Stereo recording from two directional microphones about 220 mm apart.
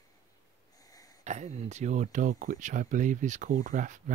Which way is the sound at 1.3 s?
30° right (ahead or behind).